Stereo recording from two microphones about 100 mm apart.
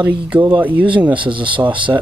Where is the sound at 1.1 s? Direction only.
55° right (ahead or behind).